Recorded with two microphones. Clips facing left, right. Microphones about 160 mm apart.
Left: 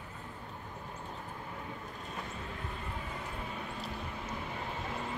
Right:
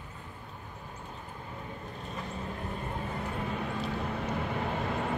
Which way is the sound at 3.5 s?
70° right (ahead or behind).